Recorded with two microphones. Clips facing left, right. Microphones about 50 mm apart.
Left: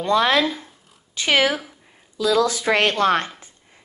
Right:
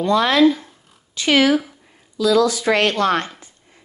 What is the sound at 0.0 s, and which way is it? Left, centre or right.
A woman's voice, left.